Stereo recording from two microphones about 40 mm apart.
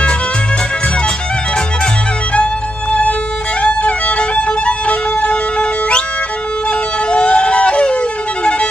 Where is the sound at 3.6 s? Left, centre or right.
Left.